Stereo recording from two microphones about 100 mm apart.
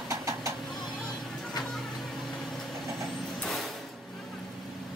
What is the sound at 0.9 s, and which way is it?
Music, 5° left (ahead or behind).